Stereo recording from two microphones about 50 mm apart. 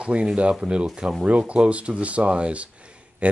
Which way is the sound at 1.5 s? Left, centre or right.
Right.